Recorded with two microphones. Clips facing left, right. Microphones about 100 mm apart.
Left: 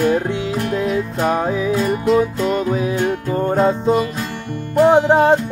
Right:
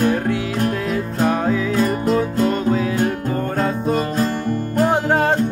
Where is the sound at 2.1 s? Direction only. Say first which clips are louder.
Left 2 dB; 20° left (ahead or behind).